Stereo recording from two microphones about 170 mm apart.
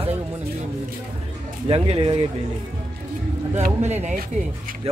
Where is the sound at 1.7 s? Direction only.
30° right (ahead or behind).